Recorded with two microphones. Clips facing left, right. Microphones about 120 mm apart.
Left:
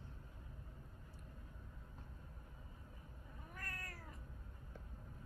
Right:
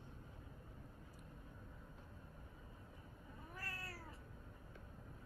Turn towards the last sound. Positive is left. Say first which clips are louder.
# right 1 dB
turn(degrees=-30)  # may be behind; listen again after turning